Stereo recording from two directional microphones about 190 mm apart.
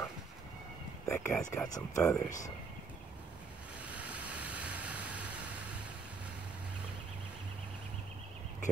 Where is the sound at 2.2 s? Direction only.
40° left (ahead or behind).